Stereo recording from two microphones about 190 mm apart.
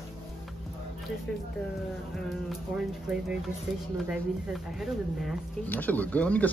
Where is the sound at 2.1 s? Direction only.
5° right (ahead or behind).